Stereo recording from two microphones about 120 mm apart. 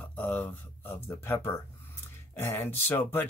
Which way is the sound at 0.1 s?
10° left (ahead or behind).